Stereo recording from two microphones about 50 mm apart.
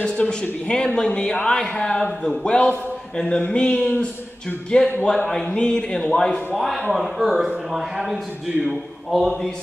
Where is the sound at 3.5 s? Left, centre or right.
Centre.